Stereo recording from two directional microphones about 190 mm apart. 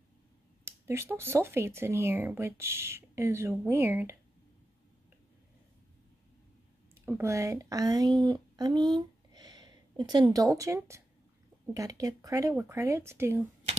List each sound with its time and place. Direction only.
0.7 s speech: 15° right (ahead or behind)
7.1 s speech: 15° right (ahead or behind)